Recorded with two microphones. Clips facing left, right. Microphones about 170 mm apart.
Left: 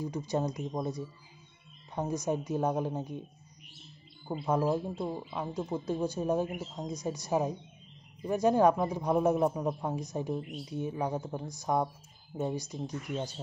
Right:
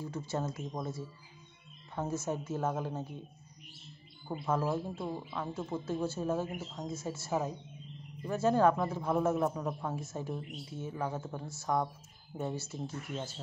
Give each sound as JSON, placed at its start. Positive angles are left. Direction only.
{"t": 0.0, "sound": "a man's voice", "side_deg": 15}
{"t": 4.5, "sound": "a man's voice", "side_deg": 15}